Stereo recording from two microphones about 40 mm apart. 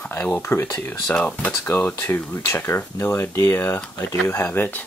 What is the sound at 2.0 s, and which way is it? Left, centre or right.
Speech, left.